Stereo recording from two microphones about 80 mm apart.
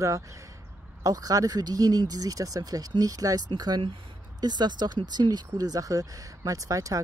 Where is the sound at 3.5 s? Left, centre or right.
Right.